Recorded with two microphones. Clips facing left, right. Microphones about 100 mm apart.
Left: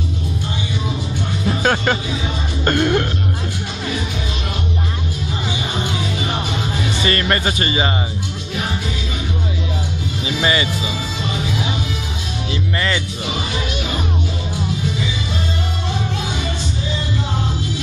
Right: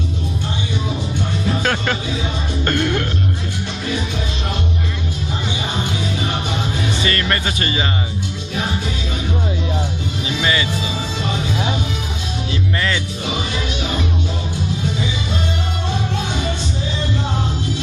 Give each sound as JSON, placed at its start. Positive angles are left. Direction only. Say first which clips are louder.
{"t": 1.6, "sound": "music", "louder": "left 3 dB", "side_deg": 20}
{"t": 7.1, "sound": "speech", "louder": "left 2 dB", "side_deg": 20}
{"t": 10.4, "sound": "speech", "louder": "left 2 dB", "side_deg": 20}
{"t": 12.7, "sound": "speech", "louder": "left 1 dB", "side_deg": 5}